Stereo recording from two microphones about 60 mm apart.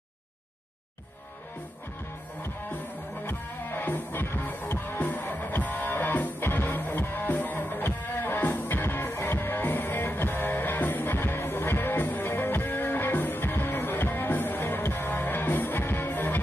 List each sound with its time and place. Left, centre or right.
3.3 s music: left